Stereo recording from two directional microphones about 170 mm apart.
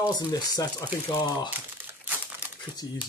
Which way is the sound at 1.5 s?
10° right (ahead or behind).